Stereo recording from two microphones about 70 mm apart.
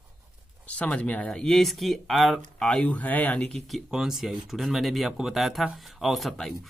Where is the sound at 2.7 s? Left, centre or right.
Left.